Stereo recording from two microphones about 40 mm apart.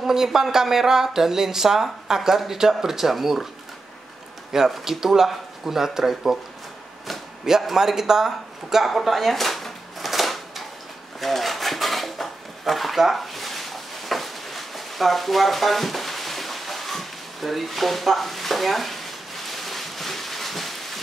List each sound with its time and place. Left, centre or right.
0.0 s speech: centre
4.5 s speech: centre
7.6 s a sound: centre